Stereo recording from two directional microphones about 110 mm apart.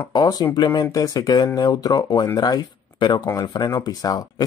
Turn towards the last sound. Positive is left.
turn(degrees=35)  # may be behind; listen again after turning